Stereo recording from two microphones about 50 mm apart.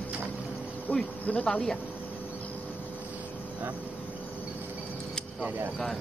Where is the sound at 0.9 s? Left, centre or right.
Left.